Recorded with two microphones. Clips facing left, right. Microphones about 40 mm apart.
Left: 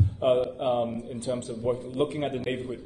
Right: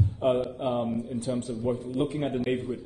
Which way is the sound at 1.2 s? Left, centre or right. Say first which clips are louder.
Right 1 dB; left.